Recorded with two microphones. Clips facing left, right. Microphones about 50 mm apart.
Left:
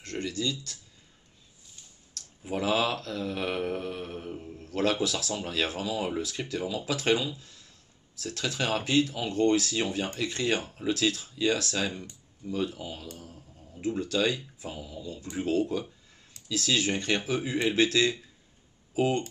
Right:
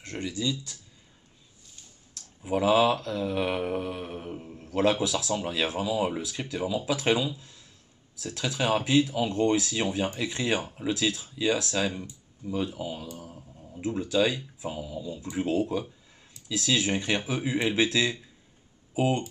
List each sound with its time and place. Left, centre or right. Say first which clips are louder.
0.0 s speech: right 1 dB; centre
2.1 s speech: right 4 dB; centre
4.6 s a sound: right 3 dB; right
4.9 s speech: right 2 dB; centre
13.2 s a sound: right 3 dB; centre
13.8 s speech: right 2 dB; centre
15.6 s speech: right 1 dB; centre